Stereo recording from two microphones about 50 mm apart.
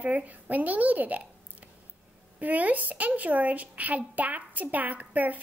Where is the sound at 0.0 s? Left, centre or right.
Right.